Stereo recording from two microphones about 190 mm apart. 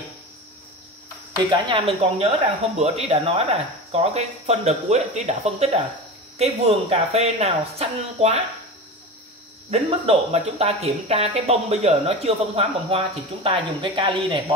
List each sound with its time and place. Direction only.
1.7 s speech: 30° right (ahead or behind)
9.7 s speech: 30° right (ahead or behind)